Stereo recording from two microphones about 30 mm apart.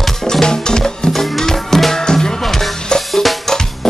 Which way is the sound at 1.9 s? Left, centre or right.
Centre.